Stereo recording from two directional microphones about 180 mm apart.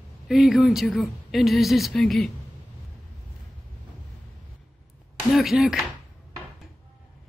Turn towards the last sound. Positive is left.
turn(degrees=0)  # may be behind; listen again after turning